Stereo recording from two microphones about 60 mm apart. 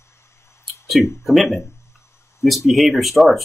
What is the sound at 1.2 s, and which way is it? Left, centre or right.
Speech, centre.